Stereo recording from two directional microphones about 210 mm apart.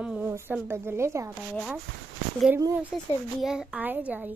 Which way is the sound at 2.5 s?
15° right (ahead or behind).